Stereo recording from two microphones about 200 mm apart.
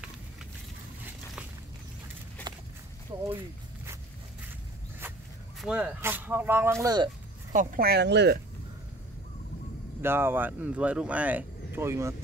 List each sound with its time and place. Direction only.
5.6 s speech: 5° right (ahead or behind)
7.5 s speech: 45° right (ahead or behind)
10.0 s speech: 10° right (ahead or behind)